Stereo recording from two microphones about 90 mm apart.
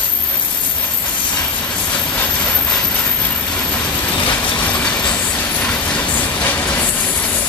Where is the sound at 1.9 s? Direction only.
15° left (ahead or behind).